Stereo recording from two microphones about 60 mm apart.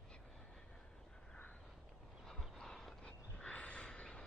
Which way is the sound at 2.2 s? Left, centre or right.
Centre.